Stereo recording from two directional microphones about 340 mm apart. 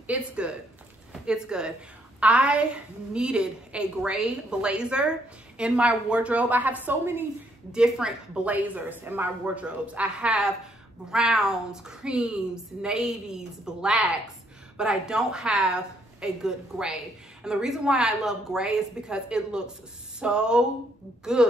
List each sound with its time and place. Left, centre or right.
0.0 s a woman's voice: centre